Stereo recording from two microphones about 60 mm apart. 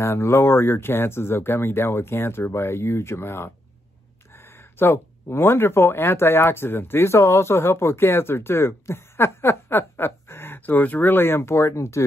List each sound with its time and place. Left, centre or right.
0.0 s speech: left